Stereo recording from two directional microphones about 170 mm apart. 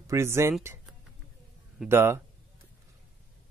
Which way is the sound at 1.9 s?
15° right (ahead or behind).